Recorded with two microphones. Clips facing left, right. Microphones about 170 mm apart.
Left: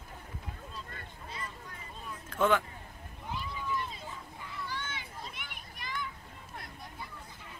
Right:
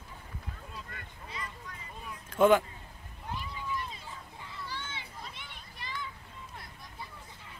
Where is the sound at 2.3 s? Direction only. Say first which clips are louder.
Right 5 dB; 15° right (ahead or behind).